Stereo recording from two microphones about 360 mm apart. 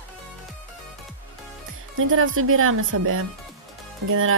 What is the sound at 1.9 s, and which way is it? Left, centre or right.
Speech, right.